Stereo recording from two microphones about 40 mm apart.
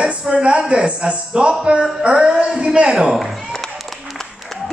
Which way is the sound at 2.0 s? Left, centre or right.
Right.